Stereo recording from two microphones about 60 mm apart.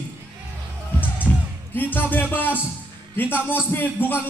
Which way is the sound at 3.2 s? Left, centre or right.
Left.